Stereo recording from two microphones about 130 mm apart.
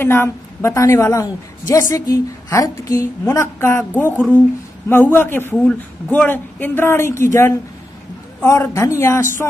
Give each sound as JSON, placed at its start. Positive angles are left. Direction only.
{"t": 0.0, "sound": "a woman's voice", "side_deg": 20}